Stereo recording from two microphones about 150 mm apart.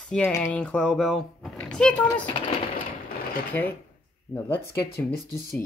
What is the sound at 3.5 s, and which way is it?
Speech, 10° left (ahead or behind).